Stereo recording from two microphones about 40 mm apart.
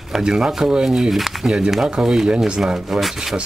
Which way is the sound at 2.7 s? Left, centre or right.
Centre.